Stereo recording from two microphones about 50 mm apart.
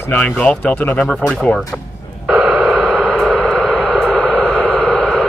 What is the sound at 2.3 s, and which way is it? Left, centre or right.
Radio, centre.